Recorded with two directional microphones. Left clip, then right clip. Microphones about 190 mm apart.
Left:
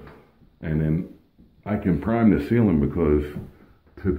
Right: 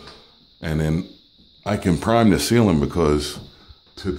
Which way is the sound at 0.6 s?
45° right (ahead or behind).